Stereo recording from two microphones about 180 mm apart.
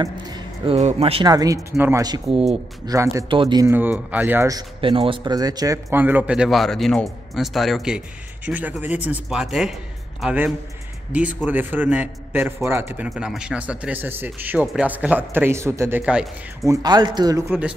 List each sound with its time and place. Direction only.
0.0 s music: 20° right (ahead or behind)
0.7 s a man's voice: 35° right (ahead or behind)
3.6 s a man's voice: 10° right (ahead or behind)
16.6 s speech: 20° right (ahead or behind)